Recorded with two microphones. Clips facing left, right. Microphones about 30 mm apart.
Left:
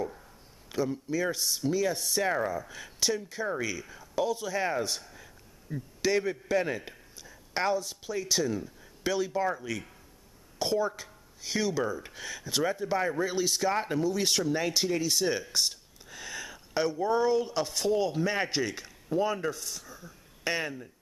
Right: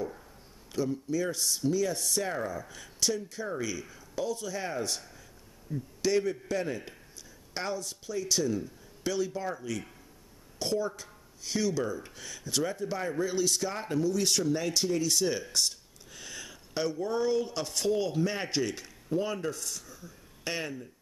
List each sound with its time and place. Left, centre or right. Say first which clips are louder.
0.7 s speech: left 1 dB; centre
5.1 s a sound: left 2 dB; left
6.7 s speech: left 2 dB; centre